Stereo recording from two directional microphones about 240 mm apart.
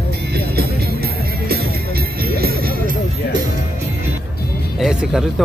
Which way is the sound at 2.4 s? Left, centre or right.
Right.